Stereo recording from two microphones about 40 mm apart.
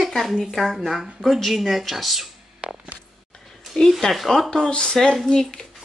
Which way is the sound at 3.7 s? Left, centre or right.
Left.